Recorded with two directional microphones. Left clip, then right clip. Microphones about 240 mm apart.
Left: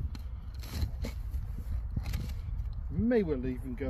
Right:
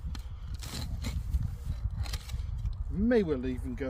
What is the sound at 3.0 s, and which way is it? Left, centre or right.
Speech, centre.